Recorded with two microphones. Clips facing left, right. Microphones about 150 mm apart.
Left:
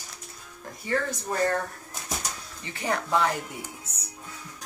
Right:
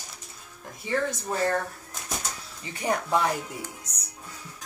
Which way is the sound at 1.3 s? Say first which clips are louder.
Left 2 dB; centre (ahead or behind).